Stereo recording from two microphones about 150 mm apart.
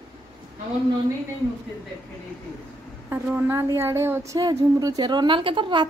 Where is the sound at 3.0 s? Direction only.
15° right (ahead or behind).